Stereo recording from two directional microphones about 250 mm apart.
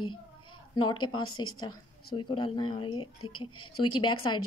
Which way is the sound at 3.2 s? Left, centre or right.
Left.